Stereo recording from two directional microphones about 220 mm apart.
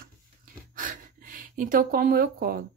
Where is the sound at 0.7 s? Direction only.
40° right (ahead or behind).